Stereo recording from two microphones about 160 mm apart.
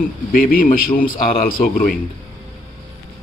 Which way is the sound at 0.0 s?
65° left (ahead or behind).